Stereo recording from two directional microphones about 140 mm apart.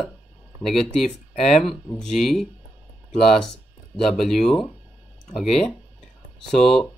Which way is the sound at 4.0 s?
Centre (ahead or behind).